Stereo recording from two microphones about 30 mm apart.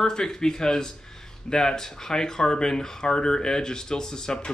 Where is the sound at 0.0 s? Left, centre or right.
Left.